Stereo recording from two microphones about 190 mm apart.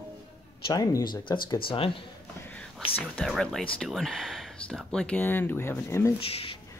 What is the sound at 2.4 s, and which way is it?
Whispering, 10° left (ahead or behind).